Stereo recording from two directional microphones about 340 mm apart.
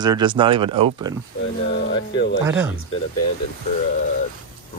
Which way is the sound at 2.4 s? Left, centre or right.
Centre.